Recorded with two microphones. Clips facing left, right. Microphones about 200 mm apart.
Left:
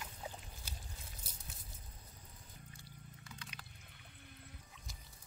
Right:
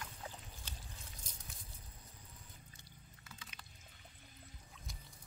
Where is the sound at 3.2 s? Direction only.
Centre (ahead or behind).